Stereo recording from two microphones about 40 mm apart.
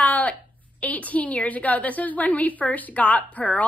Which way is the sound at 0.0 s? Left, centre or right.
Left.